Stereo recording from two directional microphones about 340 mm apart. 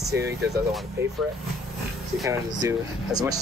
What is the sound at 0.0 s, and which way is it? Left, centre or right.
Speech, right.